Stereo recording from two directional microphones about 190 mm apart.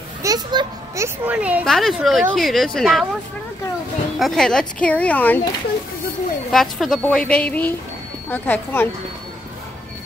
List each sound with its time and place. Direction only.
0.2 s children playing: 20° right (ahead or behind)
1.0 s speech: 10° right (ahead or behind)
4.2 s speech: 5° left (ahead or behind)
6.5 s speech: centre (ahead or behind)